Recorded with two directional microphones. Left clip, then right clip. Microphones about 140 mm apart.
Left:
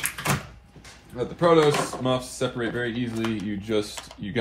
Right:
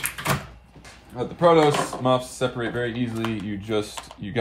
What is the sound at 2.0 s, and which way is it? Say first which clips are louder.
Speech: right 4 dB; 45° right (ahead or behind).